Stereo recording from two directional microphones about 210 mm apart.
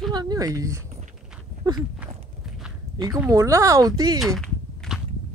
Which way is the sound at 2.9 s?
15° right (ahead or behind).